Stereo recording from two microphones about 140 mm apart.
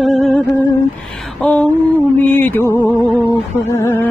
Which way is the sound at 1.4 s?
10° left (ahead or behind).